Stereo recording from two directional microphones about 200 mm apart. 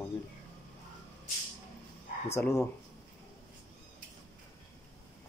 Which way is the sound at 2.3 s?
10° left (ahead or behind).